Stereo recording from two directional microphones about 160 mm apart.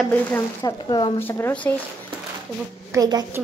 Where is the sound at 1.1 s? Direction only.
15° left (ahead or behind).